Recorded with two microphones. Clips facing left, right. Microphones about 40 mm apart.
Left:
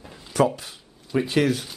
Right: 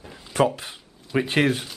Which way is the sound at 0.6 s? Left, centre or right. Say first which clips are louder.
Right 3 dB; right.